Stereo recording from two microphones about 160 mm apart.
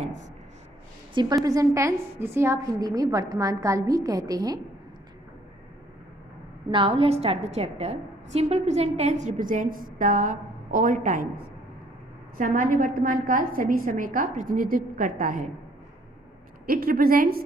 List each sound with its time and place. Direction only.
1.1 s a woman's voice: 20° right (ahead or behind)
6.7 s a woman's voice: 35° right (ahead or behind); by 11.2 s 55° right (ahead or behind)
12.4 s a woman's voice: 60° right (ahead or behind)
16.6 s a woman's voice: 65° right (ahead or behind)